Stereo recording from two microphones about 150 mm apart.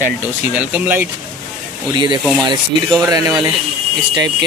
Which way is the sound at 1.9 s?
30° right (ahead or behind).